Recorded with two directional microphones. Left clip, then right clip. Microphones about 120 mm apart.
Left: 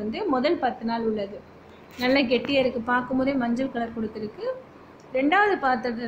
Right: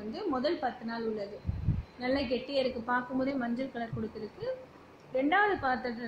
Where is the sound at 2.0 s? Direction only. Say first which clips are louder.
Left 10 dB; 5° left (ahead or behind).